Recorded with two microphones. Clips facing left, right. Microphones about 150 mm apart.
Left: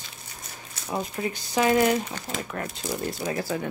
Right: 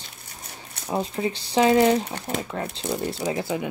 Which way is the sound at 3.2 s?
20° right (ahead or behind).